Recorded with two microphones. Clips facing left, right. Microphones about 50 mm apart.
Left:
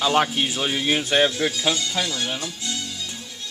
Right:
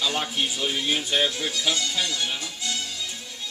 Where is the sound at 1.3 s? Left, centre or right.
Left.